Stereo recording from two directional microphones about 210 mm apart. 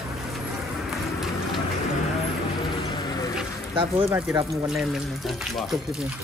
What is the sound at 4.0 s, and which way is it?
Speech, 10° right (ahead or behind).